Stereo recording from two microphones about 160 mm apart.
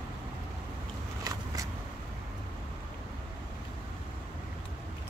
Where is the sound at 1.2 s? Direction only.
20° right (ahead or behind).